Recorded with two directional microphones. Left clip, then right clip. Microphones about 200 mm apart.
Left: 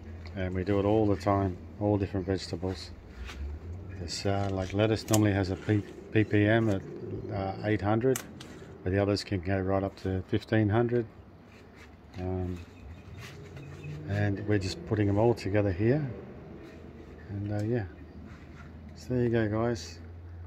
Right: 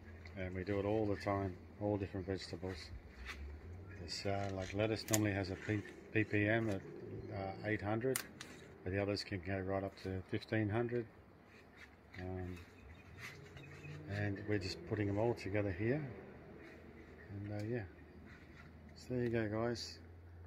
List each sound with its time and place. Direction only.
0.4 s speech: 10° left (ahead or behind)
4.2 s speech: 5° left (ahead or behind)
14.0 s speech: 5° left (ahead or behind)
17.5 s speech: 5° left (ahead or behind)
19.0 s speech: centre (ahead or behind)